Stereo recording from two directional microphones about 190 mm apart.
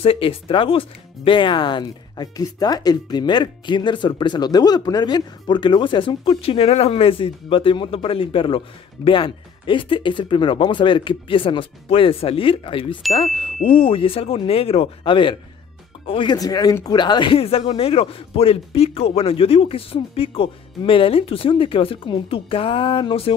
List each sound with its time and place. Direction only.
0.0 s speech: 30° left (ahead or behind)